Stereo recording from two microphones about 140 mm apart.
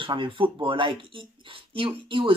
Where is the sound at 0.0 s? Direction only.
35° right (ahead or behind).